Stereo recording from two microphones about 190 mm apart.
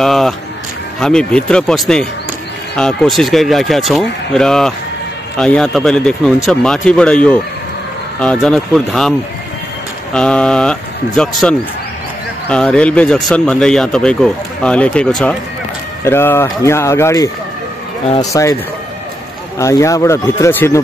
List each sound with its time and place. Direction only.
0.0 s speech: centre (ahead or behind)
10.1 s speech: 5° left (ahead or behind)
19.6 s speech: 15° left (ahead or behind)